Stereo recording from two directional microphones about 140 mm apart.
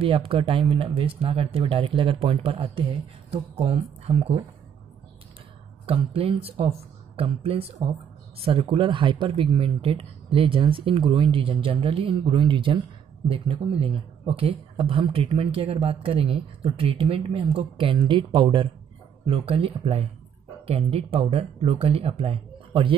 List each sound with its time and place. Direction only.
0.0 s speech: 40° right (ahead or behind)
5.9 s speech: 45° right (ahead or behind)